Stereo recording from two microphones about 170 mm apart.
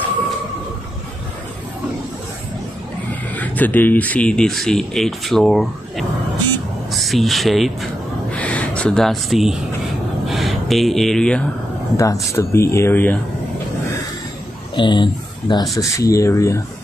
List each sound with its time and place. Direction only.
3.3 s speech: 10° left (ahead or behind)
6.9 s a sound: centre (ahead or behind)
12.0 s speech: 20° left (ahead or behind)
14.8 s speech: 25° left (ahead or behind)